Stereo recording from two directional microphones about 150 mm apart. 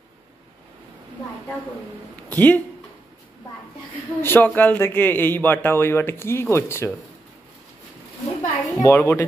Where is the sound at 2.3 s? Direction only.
10° left (ahead or behind).